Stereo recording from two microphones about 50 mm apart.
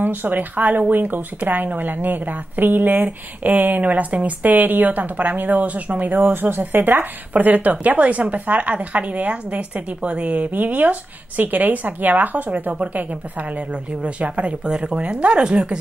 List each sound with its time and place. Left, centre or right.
0.0 s speech: right
14.7 s speech: centre